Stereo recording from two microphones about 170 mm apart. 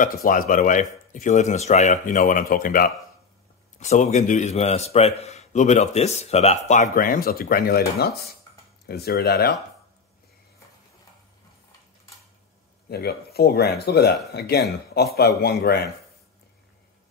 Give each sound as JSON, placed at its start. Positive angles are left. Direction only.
{"t": 0.0, "sound": "speech", "side_deg": 55}
{"t": 3.8, "sound": "a man's voice", "side_deg": 45}
{"t": 7.0, "sound": "speech", "side_deg": 60}
{"t": 12.8, "sound": "speech", "side_deg": 70}